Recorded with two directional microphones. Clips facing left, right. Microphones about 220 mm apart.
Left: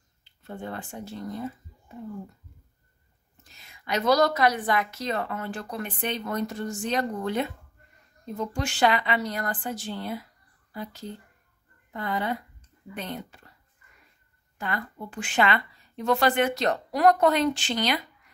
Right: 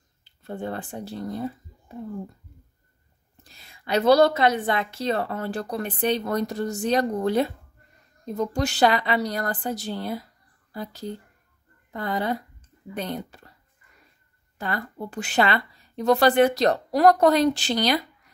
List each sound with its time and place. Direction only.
0.2 s speech: 35° right (ahead or behind)
3.4 s a woman's voice: 35° right (ahead or behind)
14.6 s a woman's voice: 35° right (ahead or behind)